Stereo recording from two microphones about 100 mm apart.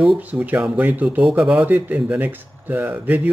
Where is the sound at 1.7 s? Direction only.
20° right (ahead or behind).